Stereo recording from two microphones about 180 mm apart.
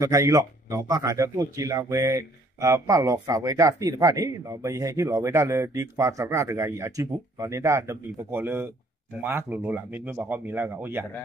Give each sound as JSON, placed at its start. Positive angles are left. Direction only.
{"t": 0.0, "sound": "speech", "side_deg": -15}